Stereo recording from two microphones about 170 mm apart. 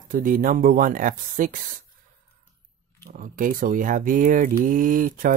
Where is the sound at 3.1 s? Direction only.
50° right (ahead or behind).